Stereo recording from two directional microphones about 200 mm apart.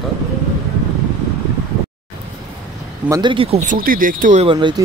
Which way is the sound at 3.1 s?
25° right (ahead or behind).